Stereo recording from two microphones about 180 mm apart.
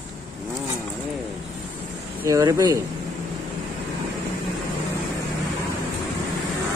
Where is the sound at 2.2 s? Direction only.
15° right (ahead or behind).